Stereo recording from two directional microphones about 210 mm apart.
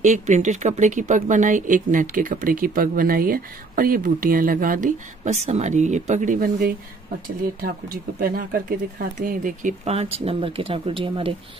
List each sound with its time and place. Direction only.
0.0 s speech: 35° right (ahead or behind)